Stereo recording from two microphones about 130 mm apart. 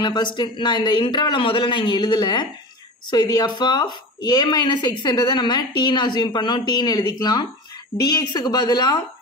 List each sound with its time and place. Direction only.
0.0 s a woman's voice: 35° left (ahead or behind)